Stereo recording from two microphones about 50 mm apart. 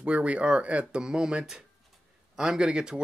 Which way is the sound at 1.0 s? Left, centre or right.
Centre.